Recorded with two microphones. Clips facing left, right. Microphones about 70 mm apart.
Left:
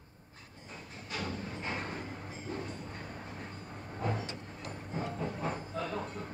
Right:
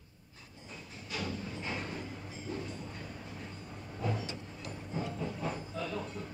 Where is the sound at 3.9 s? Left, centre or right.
Left.